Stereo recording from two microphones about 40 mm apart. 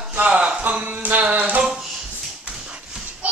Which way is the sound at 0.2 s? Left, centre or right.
Right.